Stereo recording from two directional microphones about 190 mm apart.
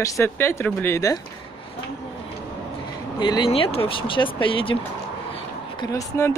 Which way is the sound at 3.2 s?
25° left (ahead or behind).